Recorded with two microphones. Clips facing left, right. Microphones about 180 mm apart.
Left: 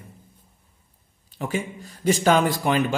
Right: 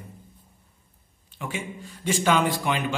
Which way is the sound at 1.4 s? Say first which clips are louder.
Left 5 dB; 40° left (ahead or behind).